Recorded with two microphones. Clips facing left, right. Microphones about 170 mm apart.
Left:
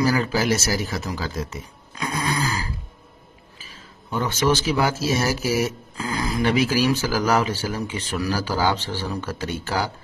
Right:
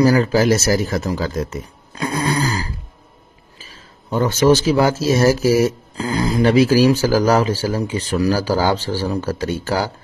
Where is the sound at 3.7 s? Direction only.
40° right (ahead or behind).